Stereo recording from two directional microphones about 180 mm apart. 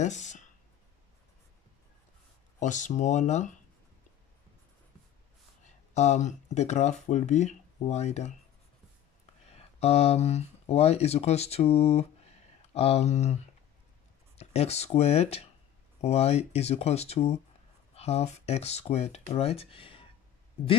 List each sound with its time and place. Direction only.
0.0 s a sound: 40° left (ahead or behind)
2.6 s speech: 45° left (ahead or behind)
5.9 s speech: 40° left (ahead or behind)